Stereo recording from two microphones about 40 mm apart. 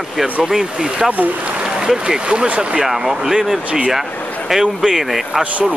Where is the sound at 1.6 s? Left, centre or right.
Centre.